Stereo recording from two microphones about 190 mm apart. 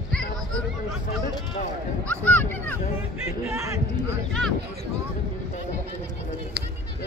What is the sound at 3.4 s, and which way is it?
Speech, 15° right (ahead or behind).